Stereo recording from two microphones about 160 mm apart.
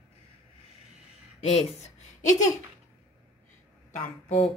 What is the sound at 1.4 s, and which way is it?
Speech, 40° left (ahead or behind).